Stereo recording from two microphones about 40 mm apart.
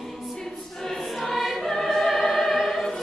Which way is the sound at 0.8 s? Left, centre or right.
Centre.